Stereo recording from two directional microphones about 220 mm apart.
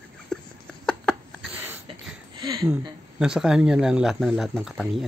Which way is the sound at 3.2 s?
5° right (ahead or behind).